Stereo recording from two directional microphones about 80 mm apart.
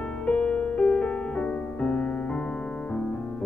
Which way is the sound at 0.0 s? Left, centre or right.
Centre.